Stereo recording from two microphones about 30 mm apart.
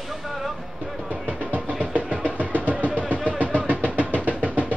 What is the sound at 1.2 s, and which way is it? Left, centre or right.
Music, right.